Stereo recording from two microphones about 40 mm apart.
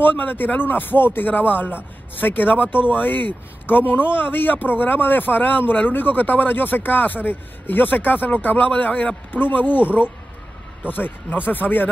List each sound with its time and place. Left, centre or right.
0.0 s speech: left
10.9 s speech: left